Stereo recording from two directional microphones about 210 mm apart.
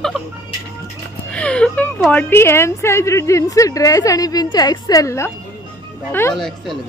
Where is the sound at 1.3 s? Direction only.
5° left (ahead or behind).